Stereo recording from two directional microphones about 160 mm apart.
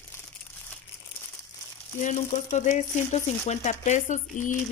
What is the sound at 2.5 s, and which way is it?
Speech, 50° left (ahead or behind).